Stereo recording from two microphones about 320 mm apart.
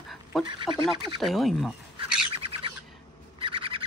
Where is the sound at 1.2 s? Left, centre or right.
Centre.